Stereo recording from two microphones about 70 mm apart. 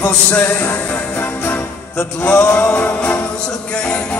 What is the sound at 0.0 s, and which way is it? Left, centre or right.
Music, left.